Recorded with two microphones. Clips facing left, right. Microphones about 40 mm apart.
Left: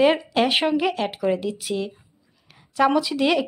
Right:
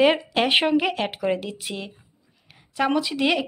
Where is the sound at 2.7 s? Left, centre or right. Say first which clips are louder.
Left 3 dB; centre.